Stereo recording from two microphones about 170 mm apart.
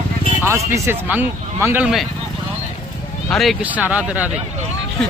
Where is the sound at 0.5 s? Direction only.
15° right (ahead or behind).